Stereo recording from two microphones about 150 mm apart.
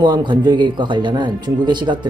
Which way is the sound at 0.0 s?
30° right (ahead or behind).